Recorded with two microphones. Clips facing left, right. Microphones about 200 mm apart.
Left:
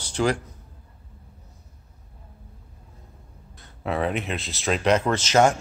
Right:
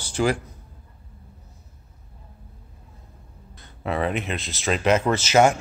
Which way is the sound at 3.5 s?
Centre (ahead or behind).